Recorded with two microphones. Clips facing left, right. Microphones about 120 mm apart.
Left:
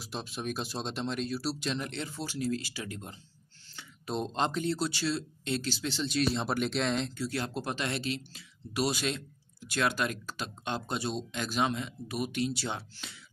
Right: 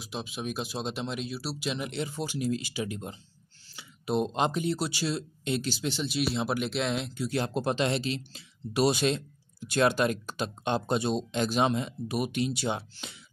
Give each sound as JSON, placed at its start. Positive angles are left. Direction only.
{"t": 0.0, "sound": "speech", "side_deg": 0}
{"t": 7.2, "sound": "speech", "side_deg": -20}